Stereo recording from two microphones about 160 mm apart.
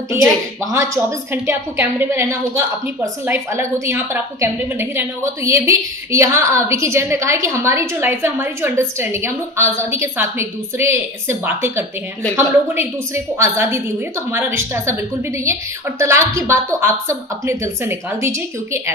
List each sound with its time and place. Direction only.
0.7 s a woman's voice: 20° right (ahead or behind)
16.0 s a woman's voice: 15° right (ahead or behind)